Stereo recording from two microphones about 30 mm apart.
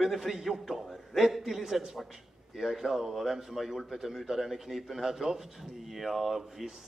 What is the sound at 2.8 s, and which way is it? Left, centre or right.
A man's voice, centre.